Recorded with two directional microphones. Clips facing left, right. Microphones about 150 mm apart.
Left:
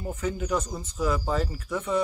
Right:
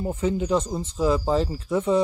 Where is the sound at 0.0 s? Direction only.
25° right (ahead or behind).